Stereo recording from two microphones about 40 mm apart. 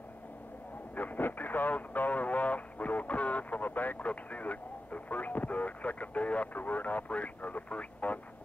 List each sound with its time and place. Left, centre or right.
0.9 s vehicle: left